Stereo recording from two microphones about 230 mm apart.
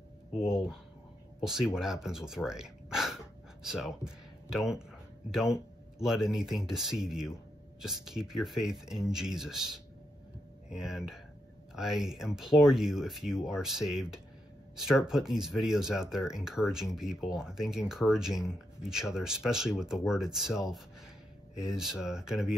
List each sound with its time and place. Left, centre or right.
0.4 s speech: centre